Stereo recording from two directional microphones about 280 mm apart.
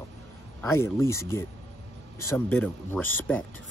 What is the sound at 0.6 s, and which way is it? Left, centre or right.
Speech, centre.